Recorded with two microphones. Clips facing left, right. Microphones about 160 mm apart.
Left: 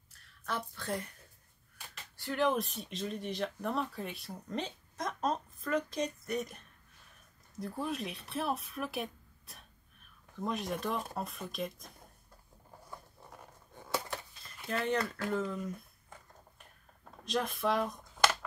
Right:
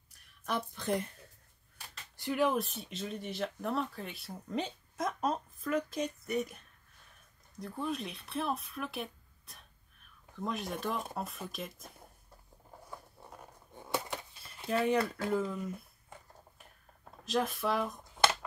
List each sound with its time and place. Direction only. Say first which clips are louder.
0.1 s a sound: right 3 dB; 15° right (ahead or behind)
2.1 s speech: right 1 dB; 10° right (ahead or behind)
7.6 s speech: even; 5° left (ahead or behind)
14.7 s speech: right 3 dB; 10° right (ahead or behind)
17.2 s speech: right 1 dB; 5° right (ahead or behind)